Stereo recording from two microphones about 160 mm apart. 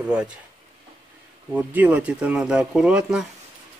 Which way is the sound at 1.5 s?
10° right (ahead or behind).